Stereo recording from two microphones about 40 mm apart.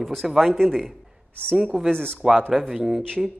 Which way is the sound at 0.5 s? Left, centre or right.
Centre.